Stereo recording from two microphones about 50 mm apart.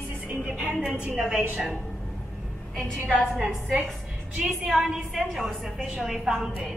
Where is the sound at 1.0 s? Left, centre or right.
Right.